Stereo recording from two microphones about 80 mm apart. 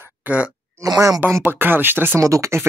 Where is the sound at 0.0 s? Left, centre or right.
Centre.